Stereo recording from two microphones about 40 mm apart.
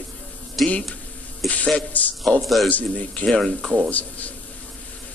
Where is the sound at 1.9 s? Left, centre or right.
Left.